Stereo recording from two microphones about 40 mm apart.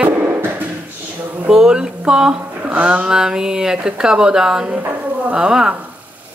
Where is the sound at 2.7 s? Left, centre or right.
Right.